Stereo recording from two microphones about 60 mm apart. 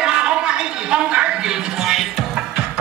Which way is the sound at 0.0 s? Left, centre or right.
Centre.